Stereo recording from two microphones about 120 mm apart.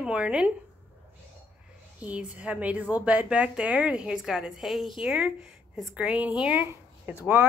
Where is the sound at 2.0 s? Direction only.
10° right (ahead or behind).